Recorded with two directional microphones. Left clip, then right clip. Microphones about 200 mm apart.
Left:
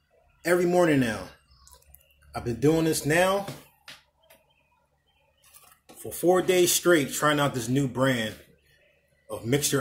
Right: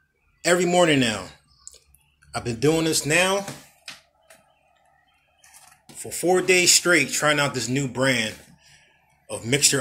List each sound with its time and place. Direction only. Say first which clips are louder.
0.4 s speech: right 3 dB; 5° right (ahead or behind)
2.3 s speech: right 2 dB; centre (ahead or behind)
6.0 s speech: right 3 dB; 10° left (ahead or behind)